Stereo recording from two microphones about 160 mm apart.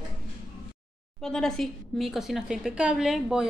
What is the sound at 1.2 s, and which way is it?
A woman's voice, 5° left (ahead or behind).